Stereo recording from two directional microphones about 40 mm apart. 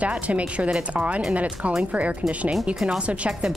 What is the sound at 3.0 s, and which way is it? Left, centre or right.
Speech, right.